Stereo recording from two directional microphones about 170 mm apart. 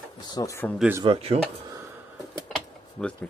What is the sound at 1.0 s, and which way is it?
Speech, 35° right (ahead or behind).